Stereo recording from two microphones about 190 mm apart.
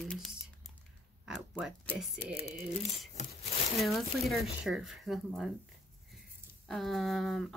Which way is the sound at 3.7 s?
Centre (ahead or behind).